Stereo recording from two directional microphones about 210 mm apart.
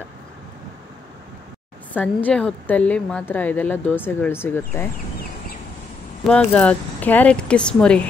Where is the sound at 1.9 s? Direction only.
5° left (ahead or behind).